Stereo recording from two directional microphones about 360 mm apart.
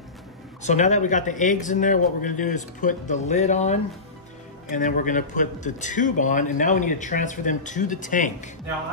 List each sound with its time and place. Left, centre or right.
0.6 s a man's voice: centre